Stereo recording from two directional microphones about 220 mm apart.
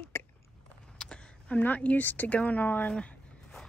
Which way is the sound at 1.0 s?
5° left (ahead or behind).